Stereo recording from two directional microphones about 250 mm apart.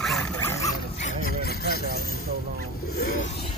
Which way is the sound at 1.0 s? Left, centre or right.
Left.